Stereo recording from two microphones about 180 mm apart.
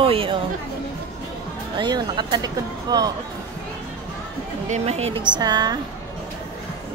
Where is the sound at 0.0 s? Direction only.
30° right (ahead or behind).